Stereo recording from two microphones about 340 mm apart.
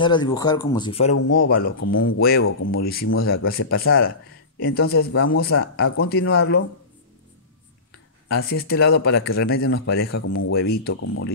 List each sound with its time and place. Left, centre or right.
0.0 s speech: centre
1.1 s speech: left
8.3 s speech: left
10.5 s speech: left